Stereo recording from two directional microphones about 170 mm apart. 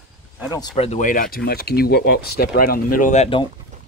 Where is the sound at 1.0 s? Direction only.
55° left (ahead or behind).